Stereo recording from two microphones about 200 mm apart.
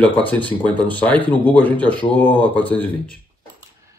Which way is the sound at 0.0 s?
5° left (ahead or behind).